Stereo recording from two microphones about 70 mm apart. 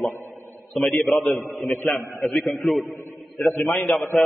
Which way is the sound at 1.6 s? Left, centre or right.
Left.